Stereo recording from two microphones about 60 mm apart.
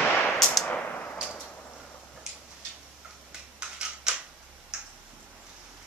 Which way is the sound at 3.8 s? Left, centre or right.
Centre.